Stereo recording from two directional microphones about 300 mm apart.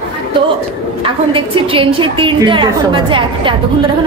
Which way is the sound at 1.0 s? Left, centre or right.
Centre.